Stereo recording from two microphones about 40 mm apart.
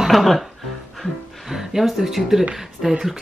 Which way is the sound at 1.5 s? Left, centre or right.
Centre.